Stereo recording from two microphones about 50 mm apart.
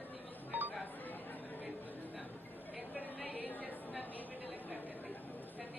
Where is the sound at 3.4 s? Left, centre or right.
Left.